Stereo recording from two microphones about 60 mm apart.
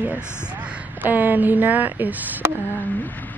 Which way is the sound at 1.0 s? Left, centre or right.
Right.